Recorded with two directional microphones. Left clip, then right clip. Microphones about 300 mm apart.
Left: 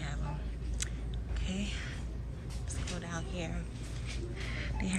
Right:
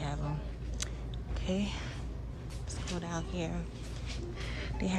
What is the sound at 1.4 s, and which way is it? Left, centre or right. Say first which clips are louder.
Speech: right 5 dB; centre.